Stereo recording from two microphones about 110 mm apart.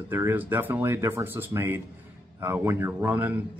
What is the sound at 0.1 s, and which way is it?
Speech, 20° right (ahead or behind).